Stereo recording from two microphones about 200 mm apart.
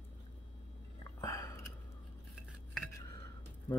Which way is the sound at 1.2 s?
15° left (ahead or behind).